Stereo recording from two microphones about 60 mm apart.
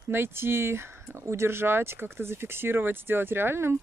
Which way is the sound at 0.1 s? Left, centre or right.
Right.